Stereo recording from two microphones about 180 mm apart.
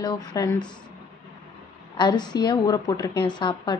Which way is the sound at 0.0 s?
20° left (ahead or behind).